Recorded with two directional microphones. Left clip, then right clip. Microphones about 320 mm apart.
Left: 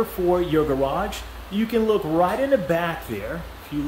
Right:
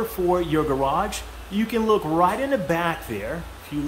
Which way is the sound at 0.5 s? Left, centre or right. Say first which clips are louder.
Even; centre.